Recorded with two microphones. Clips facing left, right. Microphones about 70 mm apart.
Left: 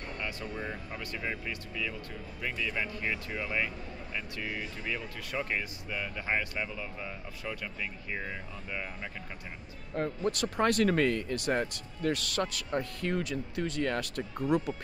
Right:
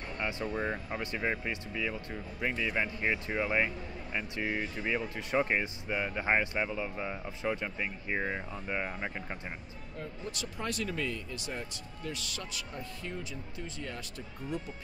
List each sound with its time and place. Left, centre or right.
0.2 s speech: right
9.9 s speech: left